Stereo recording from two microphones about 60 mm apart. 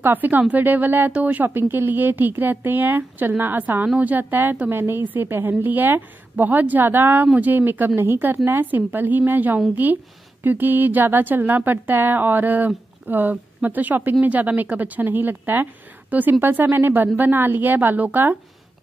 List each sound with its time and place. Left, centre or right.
0.0 s speech: right